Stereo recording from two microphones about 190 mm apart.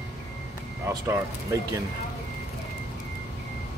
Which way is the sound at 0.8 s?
15° right (ahead or behind).